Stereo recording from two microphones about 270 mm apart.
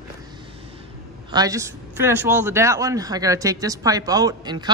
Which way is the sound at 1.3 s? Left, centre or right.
Centre.